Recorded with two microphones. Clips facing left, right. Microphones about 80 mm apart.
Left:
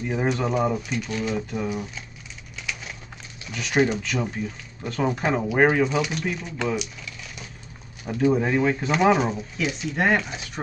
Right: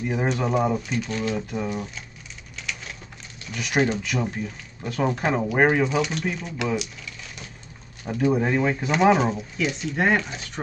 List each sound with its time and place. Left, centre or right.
0.0 s speech: centre
3.5 s speech: centre
8.0 s speech: centre